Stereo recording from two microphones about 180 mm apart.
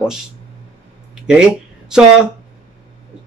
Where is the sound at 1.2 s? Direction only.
5° right (ahead or behind).